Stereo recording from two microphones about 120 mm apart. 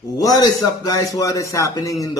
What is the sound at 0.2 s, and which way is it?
A man's voice, 30° left (ahead or behind).